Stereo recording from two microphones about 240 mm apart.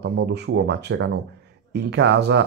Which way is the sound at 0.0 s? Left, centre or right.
Right.